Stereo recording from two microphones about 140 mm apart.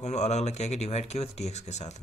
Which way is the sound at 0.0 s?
55° left (ahead or behind).